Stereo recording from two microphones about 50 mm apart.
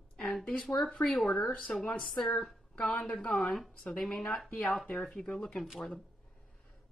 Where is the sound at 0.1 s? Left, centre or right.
Centre.